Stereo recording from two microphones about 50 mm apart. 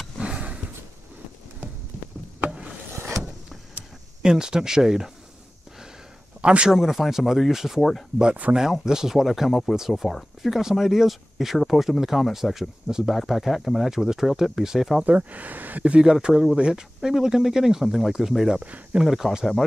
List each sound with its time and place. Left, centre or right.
0.2 s wild animals: right
4.2 s speech: centre
6.4 s speech: right
6.7 s speech: centre
10.5 s speech: centre
15.0 s speech: right
15.9 s speech: centre